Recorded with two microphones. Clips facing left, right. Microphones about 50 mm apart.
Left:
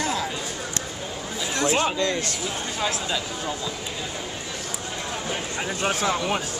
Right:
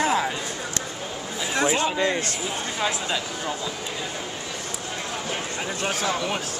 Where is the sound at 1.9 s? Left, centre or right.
Centre.